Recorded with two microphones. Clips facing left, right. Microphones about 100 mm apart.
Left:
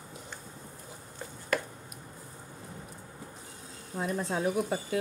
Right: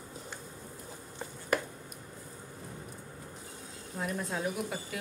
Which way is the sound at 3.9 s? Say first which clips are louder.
Left 4 dB; 25° left (ahead or behind).